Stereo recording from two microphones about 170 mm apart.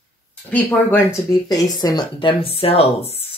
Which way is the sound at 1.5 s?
20° left (ahead or behind).